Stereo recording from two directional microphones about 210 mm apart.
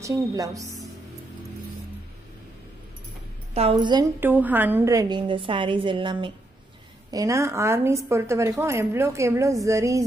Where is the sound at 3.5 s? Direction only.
25° right (ahead or behind).